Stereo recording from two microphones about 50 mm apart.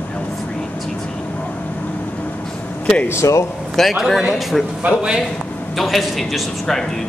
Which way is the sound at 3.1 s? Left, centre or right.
Left.